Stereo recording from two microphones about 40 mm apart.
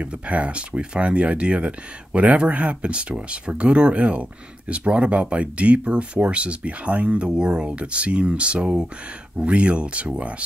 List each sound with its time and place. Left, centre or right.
0.0 s speech: right